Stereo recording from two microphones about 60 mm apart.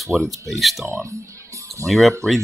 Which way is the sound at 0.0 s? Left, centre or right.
Centre.